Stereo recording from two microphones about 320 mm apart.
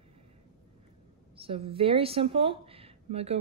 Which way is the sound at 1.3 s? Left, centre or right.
Centre.